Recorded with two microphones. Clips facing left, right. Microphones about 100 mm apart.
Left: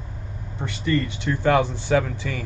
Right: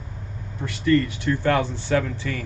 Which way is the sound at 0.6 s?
20° left (ahead or behind).